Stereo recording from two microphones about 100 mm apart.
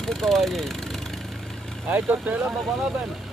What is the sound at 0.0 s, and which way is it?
Speech, 5° left (ahead or behind).